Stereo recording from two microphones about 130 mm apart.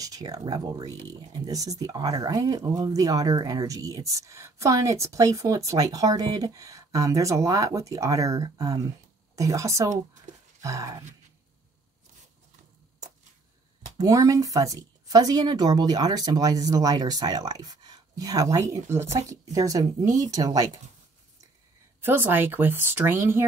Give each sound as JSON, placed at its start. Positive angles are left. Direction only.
{"t": 0.0, "sound": "speech", "side_deg": -30}
{"t": 10.3, "sound": "a sound", "side_deg": -70}
{"t": 10.6, "sound": "speech", "side_deg": -25}
{"t": 13.9, "sound": "speech", "side_deg": -25}
{"t": 22.0, "sound": "speech", "side_deg": -15}